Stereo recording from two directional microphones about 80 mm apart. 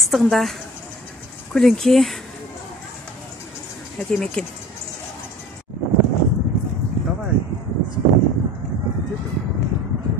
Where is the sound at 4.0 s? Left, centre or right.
Centre.